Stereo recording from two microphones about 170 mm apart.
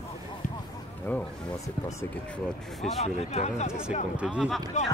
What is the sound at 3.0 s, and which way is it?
Speech, 40° left (ahead or behind).